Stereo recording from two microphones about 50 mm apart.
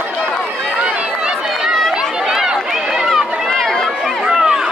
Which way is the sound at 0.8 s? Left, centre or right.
Right.